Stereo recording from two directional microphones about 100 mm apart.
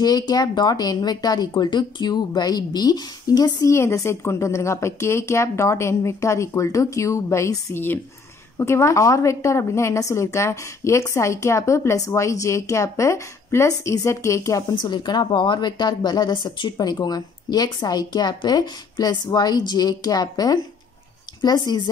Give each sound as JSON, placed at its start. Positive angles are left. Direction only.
{"t": 0.0, "sound": "a woman's voice", "side_deg": 40}
{"t": 3.7, "sound": "a woman's voice", "side_deg": 25}
{"t": 14.7, "sound": "a woman's voice", "side_deg": 45}